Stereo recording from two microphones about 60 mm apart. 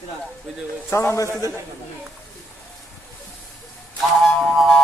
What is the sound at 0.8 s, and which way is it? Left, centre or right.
Speech, left.